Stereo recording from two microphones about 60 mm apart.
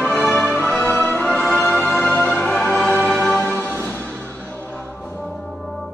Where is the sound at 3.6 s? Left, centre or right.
Left.